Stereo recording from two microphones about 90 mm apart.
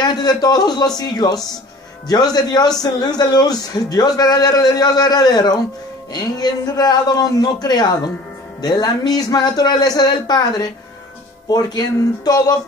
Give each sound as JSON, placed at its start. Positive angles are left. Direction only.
{"t": 0.0, "sound": "a man's voice", "side_deg": 50}